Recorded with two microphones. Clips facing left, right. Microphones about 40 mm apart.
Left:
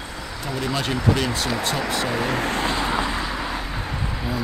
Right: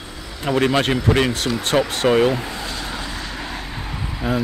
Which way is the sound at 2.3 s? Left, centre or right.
Left.